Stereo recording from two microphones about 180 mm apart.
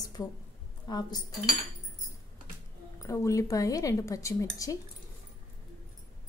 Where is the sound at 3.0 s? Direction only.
15° left (ahead or behind).